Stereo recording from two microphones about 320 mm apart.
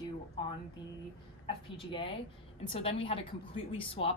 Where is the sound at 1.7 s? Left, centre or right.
Centre.